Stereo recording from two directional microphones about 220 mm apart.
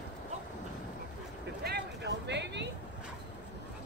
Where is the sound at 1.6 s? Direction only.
50° right (ahead or behind).